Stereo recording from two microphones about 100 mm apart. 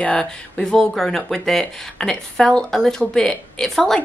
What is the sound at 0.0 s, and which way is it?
Speech, 10° left (ahead or behind).